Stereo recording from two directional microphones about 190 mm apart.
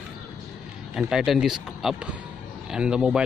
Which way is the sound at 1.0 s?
5° right (ahead or behind).